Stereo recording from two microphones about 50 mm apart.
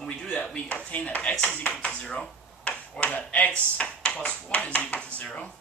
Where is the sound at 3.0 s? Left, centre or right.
Left.